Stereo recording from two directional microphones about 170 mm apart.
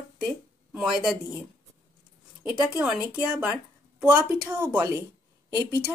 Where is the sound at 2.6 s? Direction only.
5° right (ahead or behind).